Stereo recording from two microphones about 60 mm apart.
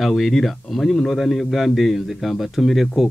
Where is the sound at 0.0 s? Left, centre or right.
Centre.